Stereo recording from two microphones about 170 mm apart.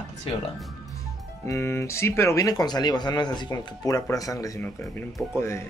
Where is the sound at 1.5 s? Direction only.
15° left (ahead or behind).